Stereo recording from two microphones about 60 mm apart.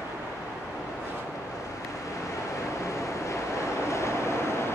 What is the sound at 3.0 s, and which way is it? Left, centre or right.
Vehicle, left.